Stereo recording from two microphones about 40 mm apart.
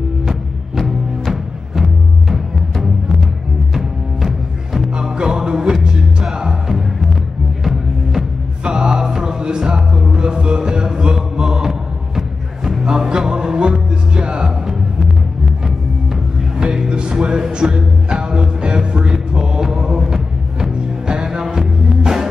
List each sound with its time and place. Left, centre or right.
0.3 s music: centre
4.7 s music: centre
8.6 s music: right
16.5 s music: centre